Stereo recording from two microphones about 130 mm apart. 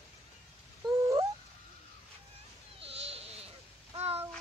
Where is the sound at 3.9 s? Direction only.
50° right (ahead or behind).